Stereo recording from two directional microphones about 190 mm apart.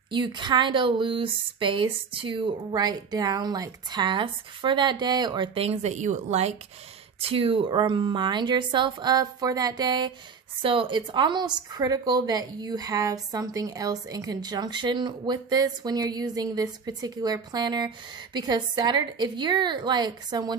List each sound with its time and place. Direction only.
0.1 s speech: 25° right (ahead or behind)